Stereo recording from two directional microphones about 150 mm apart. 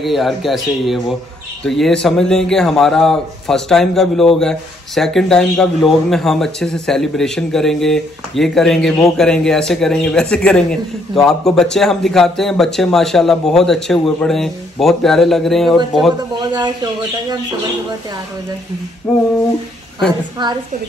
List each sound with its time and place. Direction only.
0.0 s a man's voice: centre (ahead or behind)
16.3 s speech: 30° right (ahead or behind)
19.1 s a man's voice: centre (ahead or behind)
20.4 s speech: 30° right (ahead or behind)